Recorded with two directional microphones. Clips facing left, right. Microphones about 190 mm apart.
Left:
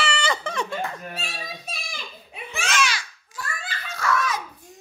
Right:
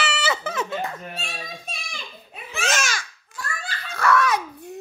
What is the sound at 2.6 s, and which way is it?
Babbling, 45° right (ahead or behind).